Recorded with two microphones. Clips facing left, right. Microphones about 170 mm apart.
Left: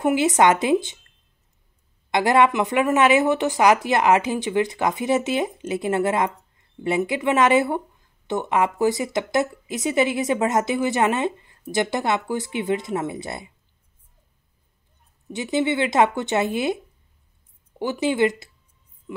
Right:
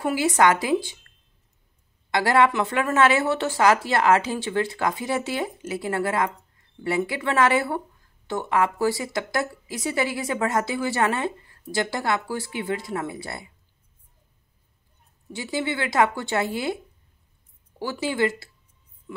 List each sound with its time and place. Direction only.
0.0 s speech: 20° left (ahead or behind)
2.0 s speech: 20° left (ahead or behind)
15.3 s speech: 20° left (ahead or behind)
19.1 s heart sounds: 20° left (ahead or behind)